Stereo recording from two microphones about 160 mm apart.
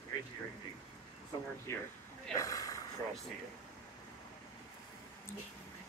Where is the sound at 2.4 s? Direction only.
20° left (ahead or behind).